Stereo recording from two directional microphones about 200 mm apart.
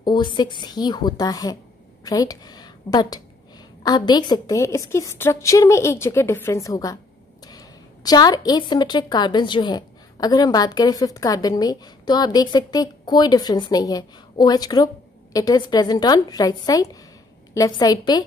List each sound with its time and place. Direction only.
0.0 s a woman's voice: 25° left (ahead or behind)